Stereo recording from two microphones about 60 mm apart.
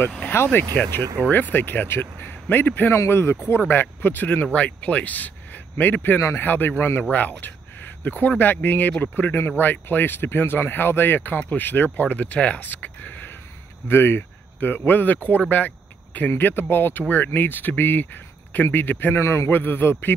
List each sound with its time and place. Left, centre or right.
0.3 s a man's voice: left
0.8 s speech: centre
1.3 s speech: left
2.9 s speech: left
13.8 s speech: left
15.5 s vehicle: left
16.3 s speech: left
19.1 s a man's voice: left
19.5 s speech: left